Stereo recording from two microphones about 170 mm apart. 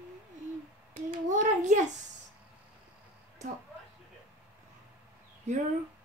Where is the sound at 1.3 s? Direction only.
45° right (ahead or behind).